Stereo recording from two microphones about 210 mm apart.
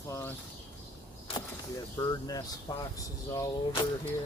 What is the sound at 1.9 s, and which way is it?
Speech, 15° left (ahead or behind).